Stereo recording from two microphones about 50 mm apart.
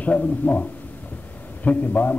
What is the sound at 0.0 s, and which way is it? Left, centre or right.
A man's voice, left.